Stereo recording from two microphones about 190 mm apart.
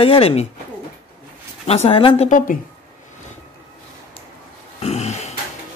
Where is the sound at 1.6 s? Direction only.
30° left (ahead or behind).